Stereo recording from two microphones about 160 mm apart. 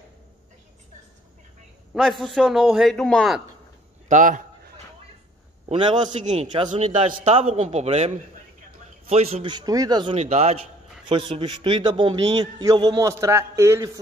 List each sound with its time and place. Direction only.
2.0 s a man's voice: centre (ahead or behind)
4.1 s a man's voice: 55° right (ahead or behind)
5.7 s a man's voice: 30° right (ahead or behind)
6.0 s a man's voice: 45° right (ahead or behind)
9.1 s a man's voice: 40° right (ahead or behind)
10.1 s a man's voice: 45° right (ahead or behind); by 13.8 s 15° right (ahead or behind)